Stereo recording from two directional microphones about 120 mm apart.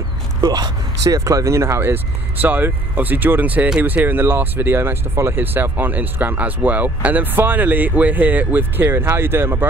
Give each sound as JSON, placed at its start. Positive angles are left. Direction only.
{"t": 0.4, "sound": "speech", "side_deg": -35}